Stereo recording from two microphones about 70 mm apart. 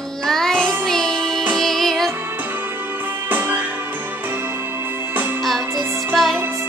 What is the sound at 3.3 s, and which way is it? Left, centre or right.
Music, right.